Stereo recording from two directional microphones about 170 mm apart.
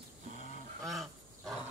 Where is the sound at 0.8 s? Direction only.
Centre (ahead or behind).